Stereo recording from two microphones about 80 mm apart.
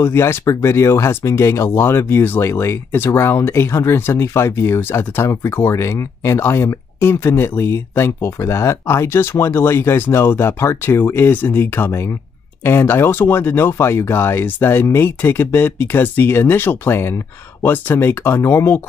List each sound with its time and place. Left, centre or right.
0.0 s speech: left